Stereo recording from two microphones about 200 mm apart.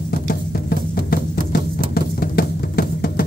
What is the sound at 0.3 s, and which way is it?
Music, 50° left (ahead or behind).